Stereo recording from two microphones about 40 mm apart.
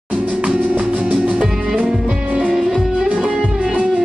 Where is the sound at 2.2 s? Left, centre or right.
Right.